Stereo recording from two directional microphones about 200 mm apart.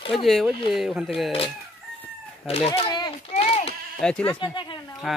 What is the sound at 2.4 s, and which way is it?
Speech, 30° left (ahead or behind).